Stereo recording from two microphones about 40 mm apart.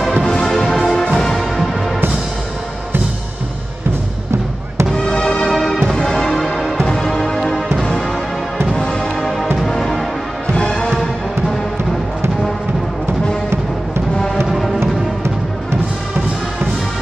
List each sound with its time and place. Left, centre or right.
0.2 s music: centre
1.2 s music: centre
5.0 s music: centre
8.7 s music: centre
10.5 s music: left
14.5 s music: centre